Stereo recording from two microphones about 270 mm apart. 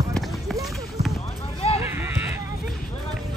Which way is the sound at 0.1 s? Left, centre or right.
Centre.